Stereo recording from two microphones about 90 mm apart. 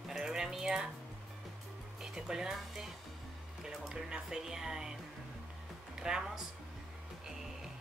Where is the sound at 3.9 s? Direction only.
5° right (ahead or behind).